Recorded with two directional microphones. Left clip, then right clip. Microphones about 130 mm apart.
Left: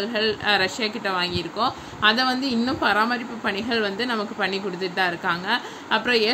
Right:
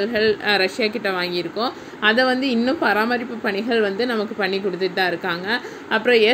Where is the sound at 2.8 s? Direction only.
15° right (ahead or behind).